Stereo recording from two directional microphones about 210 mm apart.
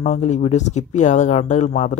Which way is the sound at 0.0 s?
35° left (ahead or behind).